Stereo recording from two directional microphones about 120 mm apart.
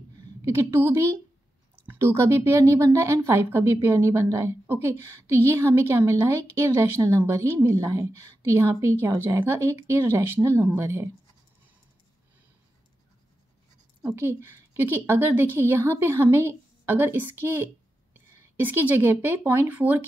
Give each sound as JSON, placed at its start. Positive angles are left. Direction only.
{"t": 0.5, "sound": "a woman's voice", "side_deg": -25}
{"t": 14.1, "sound": "a woman's voice", "side_deg": -20}